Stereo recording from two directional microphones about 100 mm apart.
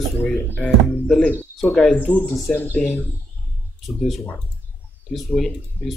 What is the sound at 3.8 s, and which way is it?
Speech, centre (ahead or behind).